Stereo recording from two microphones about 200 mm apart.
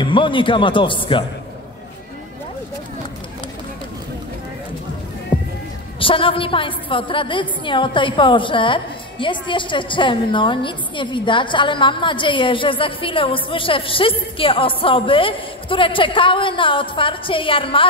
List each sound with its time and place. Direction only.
0.0 s a woman's voice: 25° left (ahead or behind)
5.9 s a woman's voice: 25° left (ahead or behind)